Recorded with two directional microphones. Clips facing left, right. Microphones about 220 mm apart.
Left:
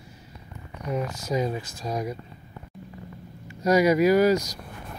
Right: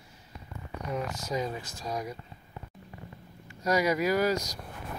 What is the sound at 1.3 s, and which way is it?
Speech, 15° left (ahead or behind).